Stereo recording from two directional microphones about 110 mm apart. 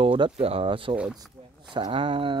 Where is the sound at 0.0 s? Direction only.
55° right (ahead or behind).